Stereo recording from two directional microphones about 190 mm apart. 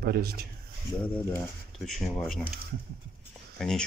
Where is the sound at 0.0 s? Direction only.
55° right (ahead or behind).